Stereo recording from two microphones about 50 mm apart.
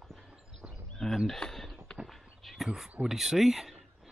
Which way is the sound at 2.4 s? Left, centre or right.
Centre.